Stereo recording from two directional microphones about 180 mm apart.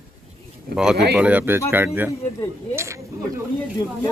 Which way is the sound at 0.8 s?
5° right (ahead or behind).